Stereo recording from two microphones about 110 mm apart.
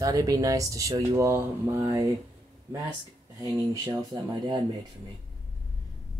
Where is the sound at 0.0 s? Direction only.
30° right (ahead or behind).